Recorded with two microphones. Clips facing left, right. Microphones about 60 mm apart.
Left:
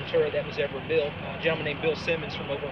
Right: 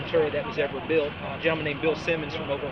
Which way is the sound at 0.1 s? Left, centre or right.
Right.